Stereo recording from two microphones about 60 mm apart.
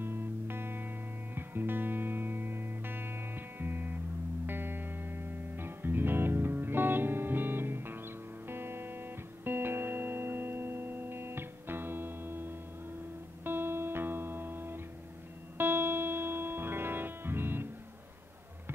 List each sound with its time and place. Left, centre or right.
0.0 s music: right